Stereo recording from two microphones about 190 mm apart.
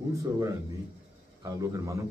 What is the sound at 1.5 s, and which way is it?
Speech, 15° right (ahead or behind).